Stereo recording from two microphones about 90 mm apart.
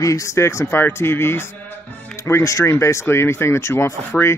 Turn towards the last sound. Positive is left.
turn(degrees=30)  # may be behind; listen again after turning